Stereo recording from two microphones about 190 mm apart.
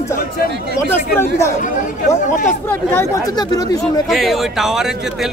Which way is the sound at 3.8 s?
Centre (ahead or behind).